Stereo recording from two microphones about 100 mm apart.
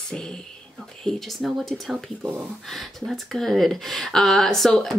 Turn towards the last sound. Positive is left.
turn(degrees=5)  # may be behind; listen again after turning